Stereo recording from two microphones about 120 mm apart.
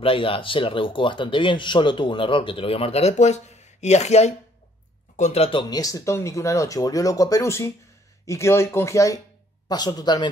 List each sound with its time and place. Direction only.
0.0 s speech: 50° left (ahead or behind)
5.6 s speech: 35° left (ahead or behind)